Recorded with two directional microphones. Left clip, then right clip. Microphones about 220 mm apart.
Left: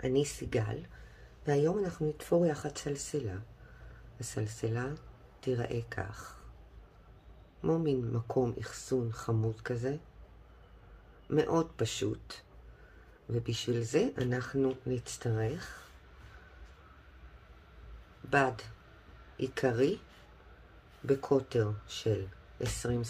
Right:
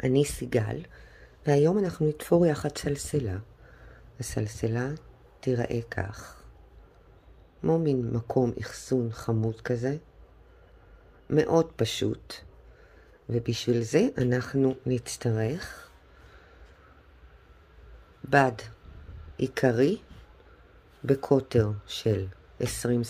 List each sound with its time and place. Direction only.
0.0 s speech: 35° right (ahead or behind)
7.6 s speech: 25° right (ahead or behind)
11.2 s speech: 25° right (ahead or behind)
18.3 s speech: 30° right (ahead or behind)
21.0 s speech: 30° right (ahead or behind)